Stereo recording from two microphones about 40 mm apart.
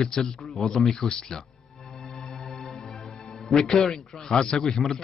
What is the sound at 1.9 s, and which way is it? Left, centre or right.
Music, centre.